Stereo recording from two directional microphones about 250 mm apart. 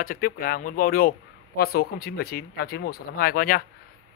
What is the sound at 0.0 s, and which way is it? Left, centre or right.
Speech, left.